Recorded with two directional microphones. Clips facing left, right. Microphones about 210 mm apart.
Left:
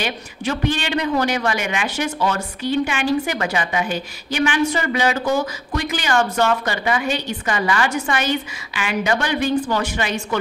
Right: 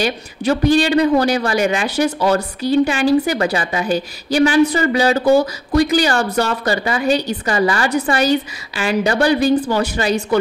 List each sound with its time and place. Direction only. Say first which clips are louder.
0.0 s speech: right 5 dB; 35° right (ahead or behind)